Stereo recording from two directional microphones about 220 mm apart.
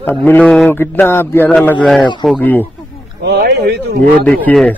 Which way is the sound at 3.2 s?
50° right (ahead or behind).